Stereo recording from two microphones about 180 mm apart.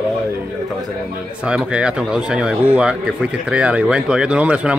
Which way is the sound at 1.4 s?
5° right (ahead or behind).